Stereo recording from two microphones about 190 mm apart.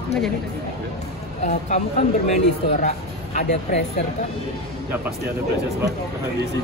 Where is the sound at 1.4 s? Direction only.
35° left (ahead or behind).